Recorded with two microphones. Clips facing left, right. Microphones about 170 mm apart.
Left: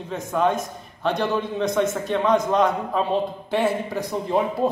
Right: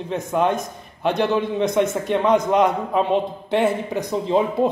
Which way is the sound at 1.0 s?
15° right (ahead or behind).